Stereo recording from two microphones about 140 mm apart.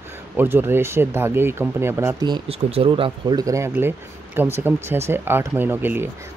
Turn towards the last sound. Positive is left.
turn(degrees=-15)  # may be behind; listen again after turning